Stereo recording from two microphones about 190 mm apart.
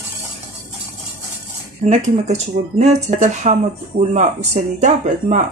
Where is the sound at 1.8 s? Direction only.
35° right (ahead or behind).